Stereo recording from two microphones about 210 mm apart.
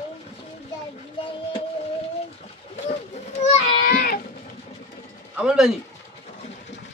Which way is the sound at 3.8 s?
45° left (ahead or behind).